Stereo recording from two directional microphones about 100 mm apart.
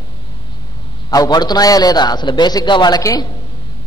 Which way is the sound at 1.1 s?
40° left (ahead or behind).